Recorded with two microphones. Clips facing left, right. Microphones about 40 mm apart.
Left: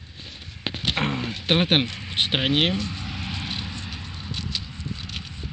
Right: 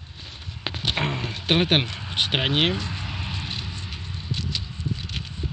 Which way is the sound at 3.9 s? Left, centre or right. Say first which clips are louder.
Right 1 dB; left.